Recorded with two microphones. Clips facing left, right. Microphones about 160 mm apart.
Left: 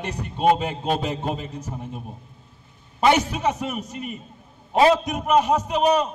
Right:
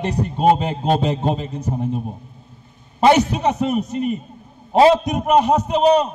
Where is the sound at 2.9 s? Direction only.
35° right (ahead or behind).